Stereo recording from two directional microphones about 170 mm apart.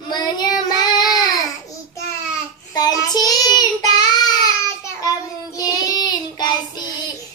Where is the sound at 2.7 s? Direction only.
25° left (ahead or behind).